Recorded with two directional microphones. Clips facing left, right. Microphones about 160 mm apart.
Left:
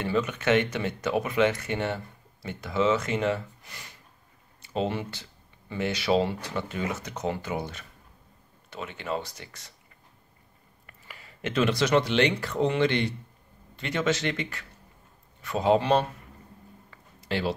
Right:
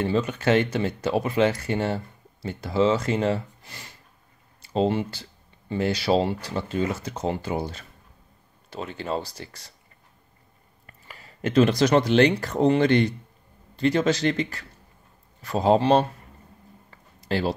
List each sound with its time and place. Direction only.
0.0 s speech: 30° right (ahead or behind)
10.9 s speech: 40° right (ahead or behind)
17.2 s a sound: 40° right (ahead or behind)